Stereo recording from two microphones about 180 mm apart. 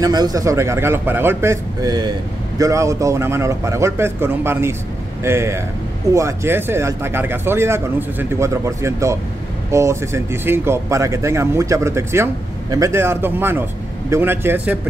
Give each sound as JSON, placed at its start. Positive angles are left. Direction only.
{"t": 0.0, "sound": "speech", "side_deg": -20}